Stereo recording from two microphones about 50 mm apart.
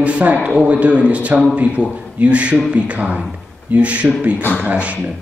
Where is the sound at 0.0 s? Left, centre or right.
Right.